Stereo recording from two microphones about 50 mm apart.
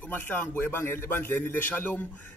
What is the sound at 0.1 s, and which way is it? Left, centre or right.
A man's voice, left.